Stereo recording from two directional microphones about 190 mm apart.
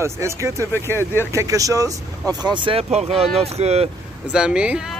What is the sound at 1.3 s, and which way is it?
Speech, 15° right (ahead or behind).